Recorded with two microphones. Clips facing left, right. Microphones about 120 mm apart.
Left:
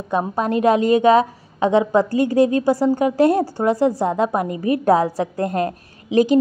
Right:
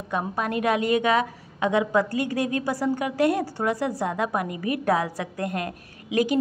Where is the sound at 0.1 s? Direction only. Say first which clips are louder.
Left 7 dB; 30° left (ahead or behind).